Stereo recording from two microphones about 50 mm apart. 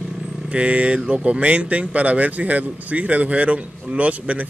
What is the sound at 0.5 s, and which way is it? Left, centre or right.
Speech, right.